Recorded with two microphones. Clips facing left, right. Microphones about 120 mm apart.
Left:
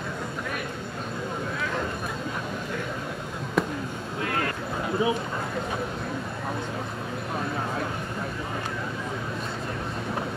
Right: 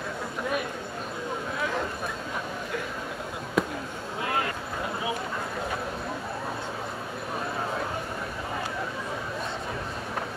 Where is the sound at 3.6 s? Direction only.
Centre (ahead or behind).